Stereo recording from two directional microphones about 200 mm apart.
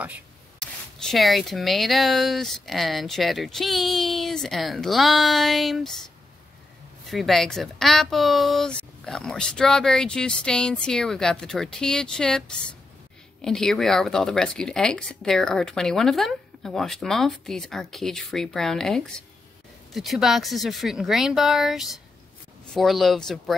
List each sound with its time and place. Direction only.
0.6 s speech: 5° left (ahead or behind)
7.1 s speech: centre (ahead or behind)